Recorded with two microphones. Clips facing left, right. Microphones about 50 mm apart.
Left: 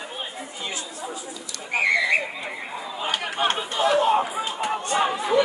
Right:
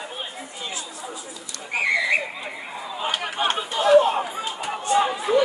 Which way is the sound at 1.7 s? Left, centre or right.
Centre.